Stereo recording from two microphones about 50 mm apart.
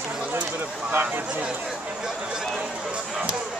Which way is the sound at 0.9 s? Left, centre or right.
Right.